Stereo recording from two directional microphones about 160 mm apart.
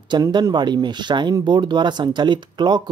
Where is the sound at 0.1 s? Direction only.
25° right (ahead or behind).